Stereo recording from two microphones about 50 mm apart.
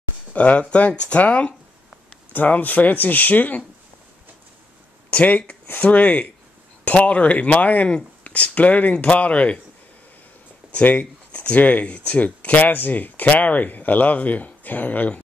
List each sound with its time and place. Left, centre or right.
0.3 s speech: left
5.1 s speech: left
10.7 s speech: left